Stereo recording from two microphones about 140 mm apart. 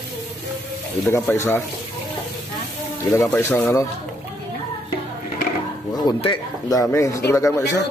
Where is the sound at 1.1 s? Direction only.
15° left (ahead or behind).